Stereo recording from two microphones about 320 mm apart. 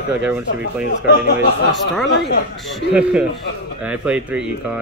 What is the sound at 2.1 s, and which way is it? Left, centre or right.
Speech, left.